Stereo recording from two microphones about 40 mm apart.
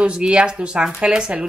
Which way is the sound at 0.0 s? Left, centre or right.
Right.